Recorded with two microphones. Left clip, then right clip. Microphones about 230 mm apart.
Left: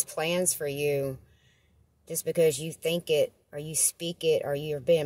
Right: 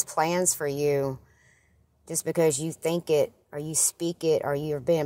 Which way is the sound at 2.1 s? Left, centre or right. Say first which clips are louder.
Even; centre.